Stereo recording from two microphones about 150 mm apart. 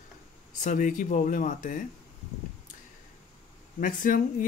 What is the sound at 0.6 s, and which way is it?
Speech, 60° left (ahead or behind).